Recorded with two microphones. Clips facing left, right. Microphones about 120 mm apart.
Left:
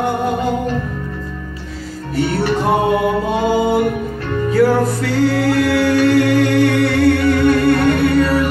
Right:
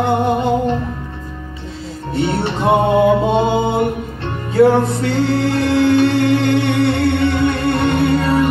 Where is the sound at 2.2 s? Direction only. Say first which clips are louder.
Left 1 dB; 25° right (ahead or behind).